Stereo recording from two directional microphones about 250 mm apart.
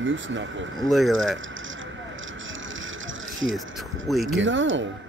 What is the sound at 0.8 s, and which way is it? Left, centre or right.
Speech, centre.